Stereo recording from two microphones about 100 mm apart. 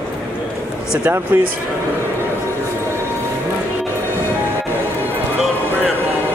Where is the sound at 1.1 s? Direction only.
15° right (ahead or behind).